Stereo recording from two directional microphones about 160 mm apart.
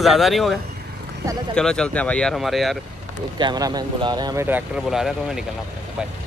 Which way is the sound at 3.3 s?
25° right (ahead or behind).